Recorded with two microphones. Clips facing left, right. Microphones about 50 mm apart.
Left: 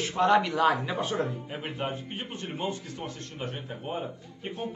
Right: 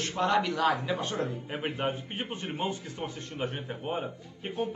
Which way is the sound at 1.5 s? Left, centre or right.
Centre.